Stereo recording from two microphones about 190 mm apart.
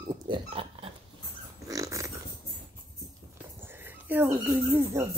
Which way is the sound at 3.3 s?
10° right (ahead or behind).